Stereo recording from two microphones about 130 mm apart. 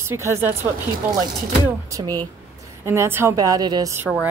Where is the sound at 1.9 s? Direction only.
25° right (ahead or behind).